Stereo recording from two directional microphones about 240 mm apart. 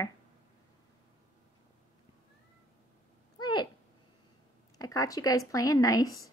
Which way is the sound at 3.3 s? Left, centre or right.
Centre.